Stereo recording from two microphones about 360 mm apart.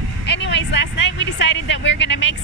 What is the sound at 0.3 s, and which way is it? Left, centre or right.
Speech, left.